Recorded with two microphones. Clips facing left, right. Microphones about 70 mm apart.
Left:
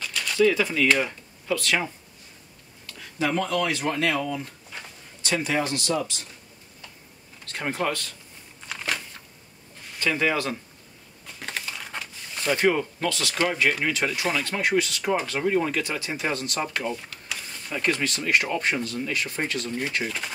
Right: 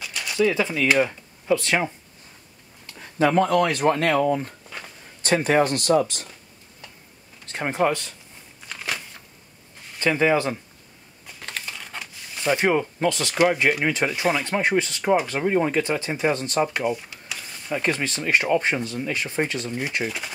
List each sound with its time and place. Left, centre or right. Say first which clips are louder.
0.0 s typewriter: left 1 dB; centre
0.8 s speech: right 3 dB; centre
2.9 s speech: right 6 dB; right
7.4 s speech: right 5 dB; right
9.9 s speech: right 5 dB; right
11.4 s a sound: left 1 dB; centre
12.0 s zipper: right 3 dB; centre
13.1 s speech: right 6 dB; right